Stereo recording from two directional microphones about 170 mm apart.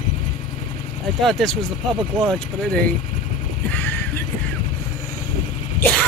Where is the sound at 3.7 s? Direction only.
10° left (ahead or behind).